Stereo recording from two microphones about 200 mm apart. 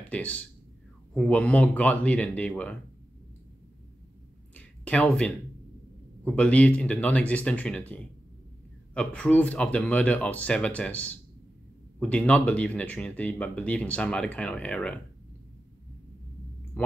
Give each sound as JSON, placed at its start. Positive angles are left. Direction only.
{"t": 0.1, "sound": "speech", "side_deg": 5}
{"t": 4.6, "sound": "a sound", "side_deg": 5}
{"t": 6.2, "sound": "speech", "side_deg": 5}